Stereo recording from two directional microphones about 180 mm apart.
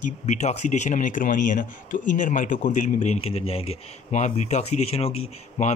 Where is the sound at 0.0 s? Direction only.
40° left (ahead or behind).